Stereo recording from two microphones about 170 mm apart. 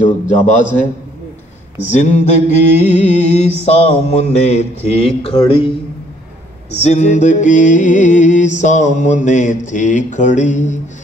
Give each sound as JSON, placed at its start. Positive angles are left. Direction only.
{"t": 0.0, "sound": "music", "side_deg": 45}
{"t": 1.9, "sound": "music", "side_deg": 45}
{"t": 6.7, "sound": "music", "side_deg": 40}